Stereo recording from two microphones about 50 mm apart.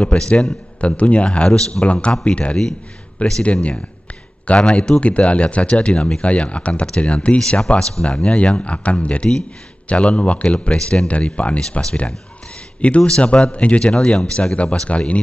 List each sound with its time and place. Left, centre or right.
0.0 s a man's voice: left
4.5 s a man's voice: centre
13.9 s a man's voice: centre